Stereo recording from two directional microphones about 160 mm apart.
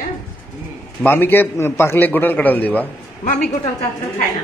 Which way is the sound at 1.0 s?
15° left (ahead or behind).